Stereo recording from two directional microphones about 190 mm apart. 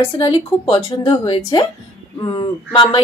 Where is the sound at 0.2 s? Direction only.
25° left (ahead or behind).